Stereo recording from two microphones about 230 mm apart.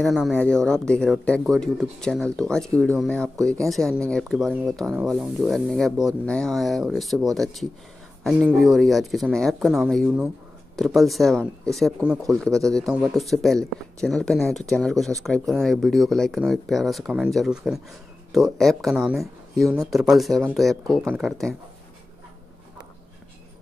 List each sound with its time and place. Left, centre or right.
0.0 s speech: centre